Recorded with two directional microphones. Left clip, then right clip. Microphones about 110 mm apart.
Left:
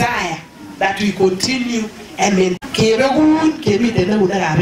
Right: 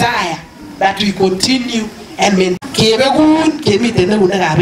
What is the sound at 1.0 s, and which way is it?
Speech, 35° right (ahead or behind).